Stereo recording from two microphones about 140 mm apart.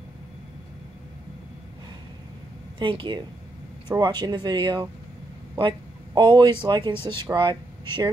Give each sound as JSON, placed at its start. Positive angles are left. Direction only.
{"t": 2.8, "sound": "a man's voice", "side_deg": -35}